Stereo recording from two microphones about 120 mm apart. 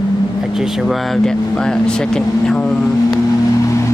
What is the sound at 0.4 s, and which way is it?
Speech, 5° right (ahead or behind).